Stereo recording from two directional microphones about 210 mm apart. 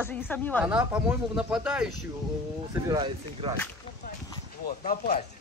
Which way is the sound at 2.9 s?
25° right (ahead or behind).